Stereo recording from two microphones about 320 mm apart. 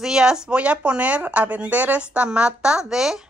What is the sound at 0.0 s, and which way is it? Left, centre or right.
A woman's voice, centre.